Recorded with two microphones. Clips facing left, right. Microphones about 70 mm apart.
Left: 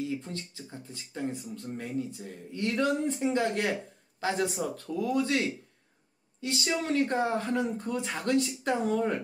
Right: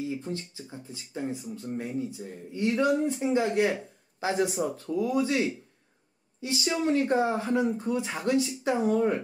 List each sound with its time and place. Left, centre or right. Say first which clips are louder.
0.1 s speech: right 2 dB; centre